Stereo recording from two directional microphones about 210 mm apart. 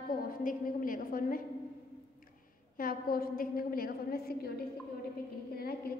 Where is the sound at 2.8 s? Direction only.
45° left (ahead or behind).